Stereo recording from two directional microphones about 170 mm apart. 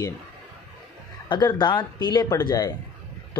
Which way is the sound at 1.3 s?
25° left (ahead or behind).